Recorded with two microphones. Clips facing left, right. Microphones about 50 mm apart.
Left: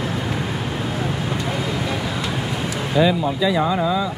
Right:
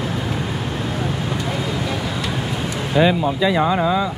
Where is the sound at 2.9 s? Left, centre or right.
Right.